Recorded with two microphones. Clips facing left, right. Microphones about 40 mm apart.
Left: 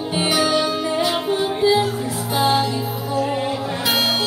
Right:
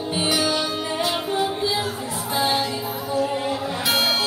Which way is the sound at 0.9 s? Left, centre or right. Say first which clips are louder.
Left 1 dB; left.